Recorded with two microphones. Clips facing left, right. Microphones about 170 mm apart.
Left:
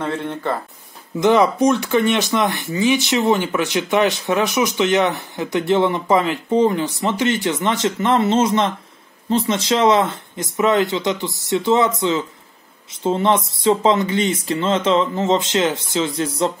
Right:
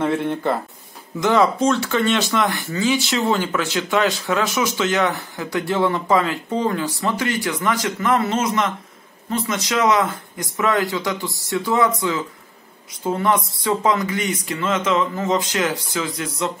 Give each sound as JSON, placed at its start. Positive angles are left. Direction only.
{"t": 0.0, "sound": "speech", "side_deg": -10}
{"t": 1.2, "sound": "speech", "side_deg": 20}
{"t": 12.9, "sound": "speech", "side_deg": 25}